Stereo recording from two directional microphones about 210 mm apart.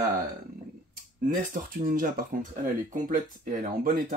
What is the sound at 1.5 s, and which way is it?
Speech, 40° right (ahead or behind).